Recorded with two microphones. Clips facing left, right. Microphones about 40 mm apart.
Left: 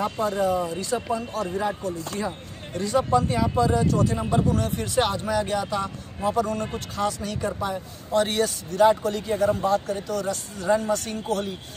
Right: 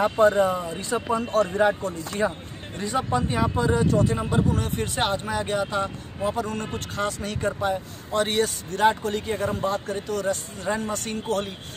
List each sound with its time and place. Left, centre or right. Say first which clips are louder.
0.0 s speech: right 5 dB; right
1.1 s a man's voice: right 5 dB; right
2.8 s speech: left 3 dB; right
9.3 s speech: left 6 dB; centre
9.7 s speech: left 3 dB; right